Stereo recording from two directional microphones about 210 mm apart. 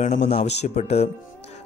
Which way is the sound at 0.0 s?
35° left (ahead or behind).